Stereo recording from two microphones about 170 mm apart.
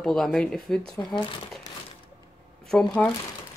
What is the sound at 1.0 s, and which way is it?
Speech, 20° left (ahead or behind).